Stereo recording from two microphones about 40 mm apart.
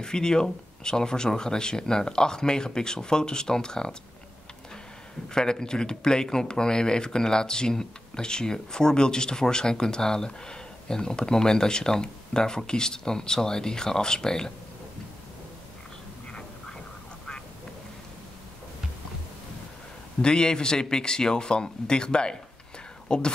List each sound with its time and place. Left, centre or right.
0.0 s speech: centre
5.3 s speech: centre
20.2 s speech: centre